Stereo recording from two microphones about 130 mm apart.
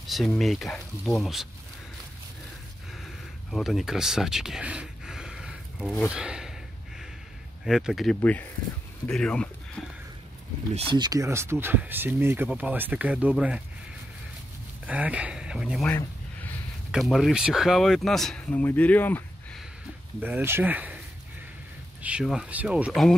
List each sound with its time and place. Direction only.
0.0 s speech: centre (ahead or behind)
3.5 s speech: centre (ahead or behind)
7.6 s speech: centre (ahead or behind)
8.2 s speech: 10° left (ahead or behind)
10.9 s speech: 30° right (ahead or behind); by 13.3 s 10° right (ahead or behind)
14.9 s speech: 10° right (ahead or behind)
16.9 s speech: centre (ahead or behind)
20.2 s speech: 15° right (ahead or behind)
22.0 s speech: 5° right (ahead or behind)